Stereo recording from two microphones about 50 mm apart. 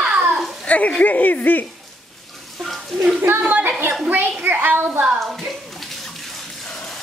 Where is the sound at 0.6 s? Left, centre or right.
Left.